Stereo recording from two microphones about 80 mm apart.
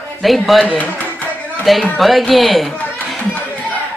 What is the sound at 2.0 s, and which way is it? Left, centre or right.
Speech, centre.